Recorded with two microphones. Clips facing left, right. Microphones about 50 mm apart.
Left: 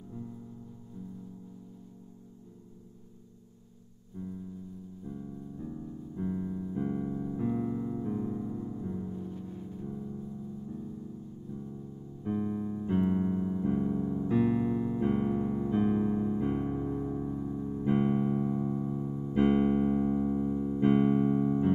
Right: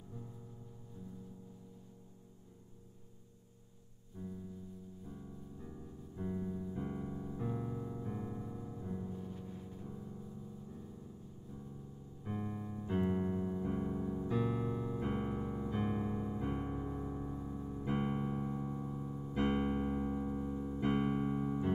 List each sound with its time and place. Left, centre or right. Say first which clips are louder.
5.1 s piano: left 8 dB; centre
8.1 s music: left 9 dB; centre
12.2 s music: left 9 dB; centre
12.9 s electric piano: left 6 dB; centre
14.2 s music: left 10 dB; left
15.0 s piano: left 9 dB; centre
15.9 s electric piano: left 9 dB; centre